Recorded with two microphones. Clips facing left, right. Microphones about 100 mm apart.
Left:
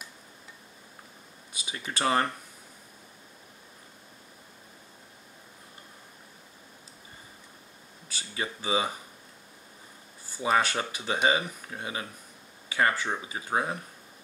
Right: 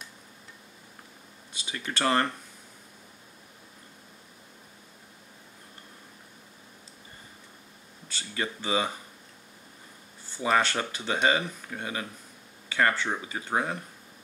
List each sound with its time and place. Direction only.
1.7 s speech: 10° left (ahead or behind)
8.2 s speech: 10° left (ahead or behind)
10.3 s speech: 10° left (ahead or behind)